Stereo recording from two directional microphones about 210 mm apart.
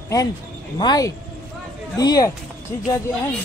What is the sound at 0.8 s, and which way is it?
Speech, 20° left (ahead or behind).